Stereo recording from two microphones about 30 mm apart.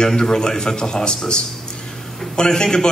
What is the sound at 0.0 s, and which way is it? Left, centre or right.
A man's voice, left.